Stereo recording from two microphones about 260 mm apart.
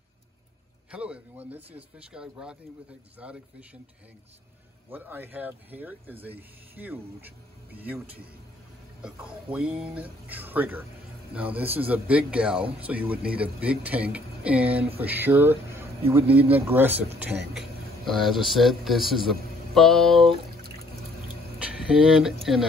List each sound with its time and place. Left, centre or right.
0.9 s speech: centre
4.8 s speech: centre
21.8 s speech: centre